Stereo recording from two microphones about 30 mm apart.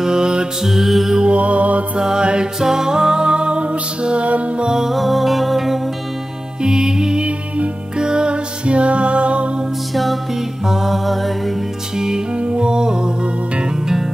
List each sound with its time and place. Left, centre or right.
0.0 s music: right
0.7 s music: centre
1.3 s mantra: right
2.0 s music: right
2.6 s music: centre; by 4.3 s right
4.9 s music: centre
6.6 s music: right
7.2 s music: right
8.0 s music: right
10.7 s music: centre
12.4 s music: right